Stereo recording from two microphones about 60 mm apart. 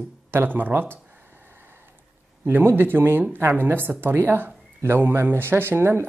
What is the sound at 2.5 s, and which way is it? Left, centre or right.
Speech, right.